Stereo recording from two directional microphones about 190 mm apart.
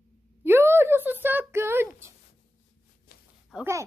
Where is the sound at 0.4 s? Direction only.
10° right (ahead or behind).